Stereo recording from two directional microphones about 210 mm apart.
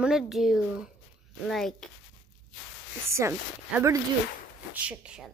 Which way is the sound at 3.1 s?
10° right (ahead or behind).